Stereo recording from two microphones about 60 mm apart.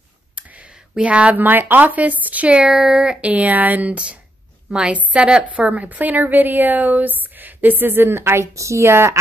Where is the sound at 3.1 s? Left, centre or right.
Right.